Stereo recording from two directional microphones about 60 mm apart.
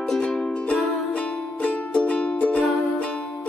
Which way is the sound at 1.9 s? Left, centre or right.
Left.